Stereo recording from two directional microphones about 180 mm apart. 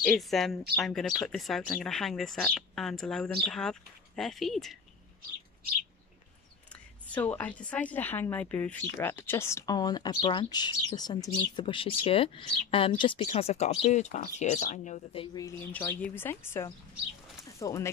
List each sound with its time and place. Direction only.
0.0 s speech: centre (ahead or behind)
7.2 s speech: 10° left (ahead or behind); by 15.2 s 40° left (ahead or behind)
15.3 s speech: 15° left (ahead or behind)